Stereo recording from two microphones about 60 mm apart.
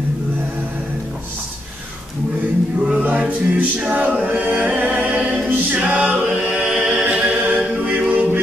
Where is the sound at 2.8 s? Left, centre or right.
Right.